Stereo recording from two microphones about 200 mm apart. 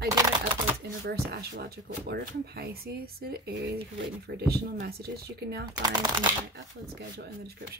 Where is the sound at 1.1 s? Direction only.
50° right (ahead or behind).